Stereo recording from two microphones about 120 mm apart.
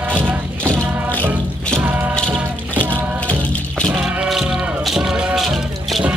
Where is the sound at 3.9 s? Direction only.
5° right (ahead or behind).